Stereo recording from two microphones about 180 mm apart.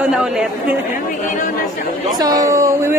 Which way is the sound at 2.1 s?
20° right (ahead or behind).